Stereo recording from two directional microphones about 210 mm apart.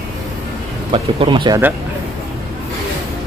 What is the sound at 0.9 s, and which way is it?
Speech, 25° right (ahead or behind).